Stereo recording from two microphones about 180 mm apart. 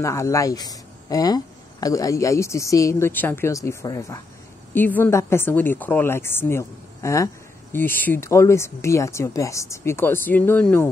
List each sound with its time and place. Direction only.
0.0 s speech: 15° left (ahead or behind)